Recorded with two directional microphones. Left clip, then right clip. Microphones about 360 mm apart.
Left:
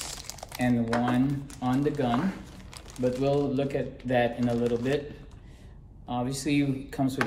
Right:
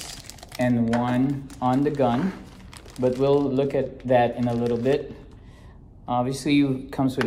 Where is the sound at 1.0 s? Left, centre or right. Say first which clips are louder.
Right 3 dB; centre.